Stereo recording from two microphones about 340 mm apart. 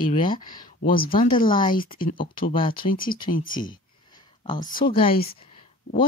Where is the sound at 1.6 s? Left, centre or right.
Centre.